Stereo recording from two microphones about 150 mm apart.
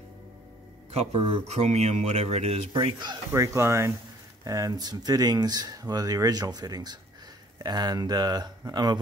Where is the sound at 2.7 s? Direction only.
30° right (ahead or behind).